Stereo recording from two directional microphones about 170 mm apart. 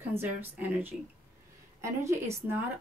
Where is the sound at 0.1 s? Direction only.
15° right (ahead or behind).